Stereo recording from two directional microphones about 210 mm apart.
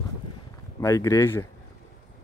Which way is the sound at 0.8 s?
15° left (ahead or behind).